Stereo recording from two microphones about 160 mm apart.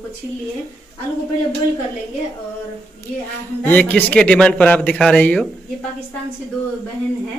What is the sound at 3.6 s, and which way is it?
Speech, 10° left (ahead or behind).